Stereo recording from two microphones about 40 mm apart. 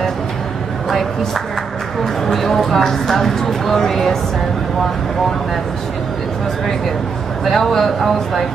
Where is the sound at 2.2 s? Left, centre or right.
Centre.